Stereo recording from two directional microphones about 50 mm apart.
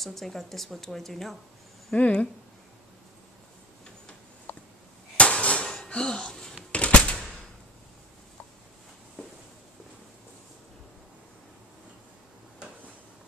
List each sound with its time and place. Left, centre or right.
0.0 s speech: centre
2.0 s speech: left
5.1 s a sound: left
5.9 s dishes: centre
6.7 s typewriter: left